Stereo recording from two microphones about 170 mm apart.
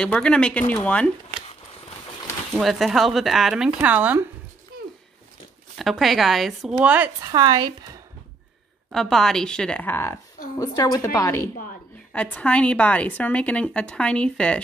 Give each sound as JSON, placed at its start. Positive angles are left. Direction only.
{"t": 0.0, "sound": "a woman's voice", "side_deg": 5}
{"t": 2.5, "sound": "speech", "side_deg": 0}
{"t": 5.8, "sound": "speech", "side_deg": 0}
{"t": 7.2, "sound": "speech", "side_deg": -25}
{"t": 8.9, "sound": "a woman's voice", "side_deg": 0}